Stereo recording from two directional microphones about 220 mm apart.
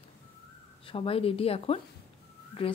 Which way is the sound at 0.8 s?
25° left (ahead or behind).